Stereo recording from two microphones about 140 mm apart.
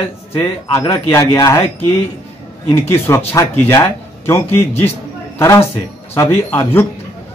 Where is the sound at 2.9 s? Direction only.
15° left (ahead or behind).